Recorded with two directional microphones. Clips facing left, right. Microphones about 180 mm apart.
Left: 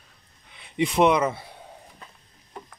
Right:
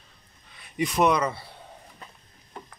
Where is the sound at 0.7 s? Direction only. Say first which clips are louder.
Left 3 dB; 25° left (ahead or behind).